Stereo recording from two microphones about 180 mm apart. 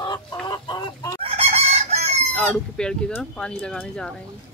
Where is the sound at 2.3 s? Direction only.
5° left (ahead or behind).